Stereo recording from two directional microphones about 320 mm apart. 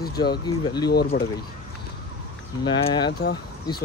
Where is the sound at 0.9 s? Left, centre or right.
Left.